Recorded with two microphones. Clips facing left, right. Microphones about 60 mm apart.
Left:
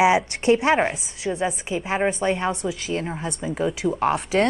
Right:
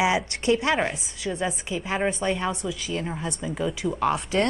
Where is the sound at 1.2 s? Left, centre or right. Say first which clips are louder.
Left 3 dB; centre.